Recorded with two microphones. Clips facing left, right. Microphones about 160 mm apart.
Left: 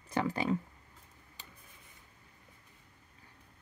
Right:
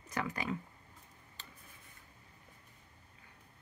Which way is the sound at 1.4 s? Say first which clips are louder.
Even; 15° left (ahead or behind).